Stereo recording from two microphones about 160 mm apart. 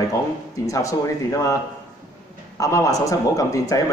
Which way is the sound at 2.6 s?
20° left (ahead or behind).